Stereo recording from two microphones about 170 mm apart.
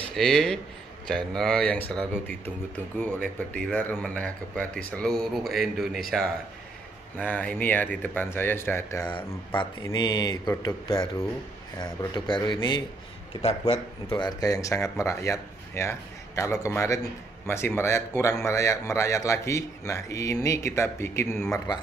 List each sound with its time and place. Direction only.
0.1 s speech: 5° left (ahead or behind)
9.6 s speech: 25° left (ahead or behind)